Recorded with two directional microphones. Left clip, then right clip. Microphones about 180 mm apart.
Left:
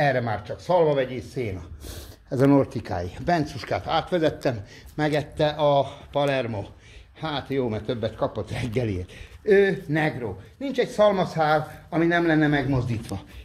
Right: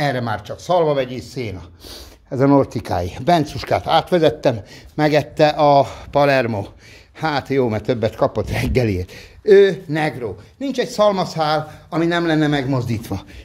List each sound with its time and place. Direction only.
0.0 s a man's voice: 15° right (ahead or behind)
1.3 s speech: 5° right (ahead or behind)
2.7 s speech: 30° right (ahead or behind)
9.5 s a man's voice: 20° right (ahead or behind)
11.1 s a man's voice: 5° right (ahead or behind)
12.7 s speech: 40° right (ahead or behind)